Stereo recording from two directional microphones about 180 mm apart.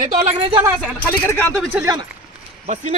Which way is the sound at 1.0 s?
10° left (ahead or behind).